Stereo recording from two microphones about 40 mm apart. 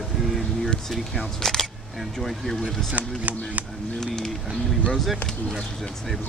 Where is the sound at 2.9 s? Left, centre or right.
Right.